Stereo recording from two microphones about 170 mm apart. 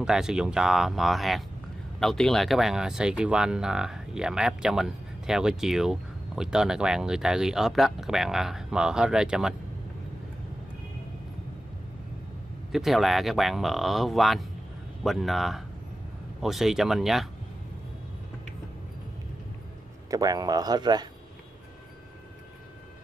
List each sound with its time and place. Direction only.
0.0 s speech: 5° right (ahead or behind)
12.7 s speech: centre (ahead or behind)
20.1 s speech: 20° right (ahead or behind)